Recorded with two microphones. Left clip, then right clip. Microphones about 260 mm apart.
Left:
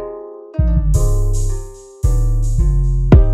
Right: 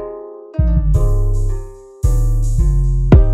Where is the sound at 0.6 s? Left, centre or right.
Right.